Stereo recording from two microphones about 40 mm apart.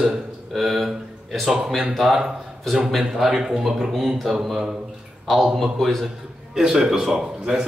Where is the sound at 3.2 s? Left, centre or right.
Centre.